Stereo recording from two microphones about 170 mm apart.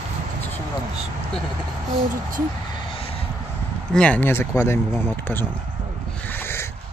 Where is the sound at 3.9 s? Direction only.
5° left (ahead or behind).